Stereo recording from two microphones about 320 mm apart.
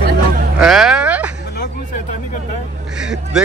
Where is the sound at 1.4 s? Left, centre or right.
Left.